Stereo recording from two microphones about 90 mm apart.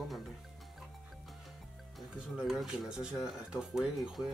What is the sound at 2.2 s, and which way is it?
Speech, 5° right (ahead or behind).